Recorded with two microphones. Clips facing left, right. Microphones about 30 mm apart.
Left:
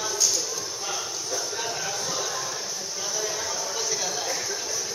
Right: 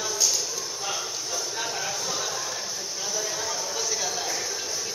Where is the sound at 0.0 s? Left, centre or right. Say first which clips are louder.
Even; centre.